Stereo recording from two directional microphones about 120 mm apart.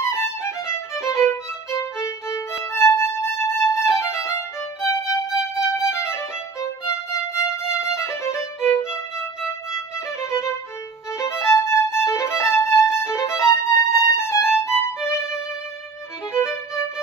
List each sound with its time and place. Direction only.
0.0 s violin: 20° left (ahead or behind)
12.9 s music: 20° left (ahead or behind)
16.3 s violin: 25° left (ahead or behind)